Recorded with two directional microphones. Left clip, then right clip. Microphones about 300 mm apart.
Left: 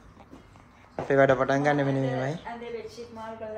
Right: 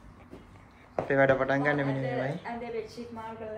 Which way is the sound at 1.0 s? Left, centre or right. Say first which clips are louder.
Left 3 dB; centre.